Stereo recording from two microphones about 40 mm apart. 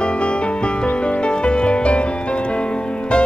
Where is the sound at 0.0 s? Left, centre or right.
Left.